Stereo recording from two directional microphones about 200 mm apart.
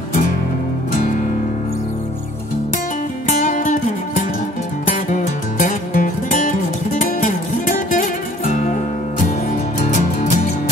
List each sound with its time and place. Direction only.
3.3 s music: 40° left (ahead or behind)
9.8 s music: 35° left (ahead or behind)